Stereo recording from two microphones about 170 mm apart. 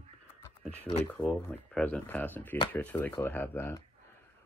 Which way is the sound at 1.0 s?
10° left (ahead or behind).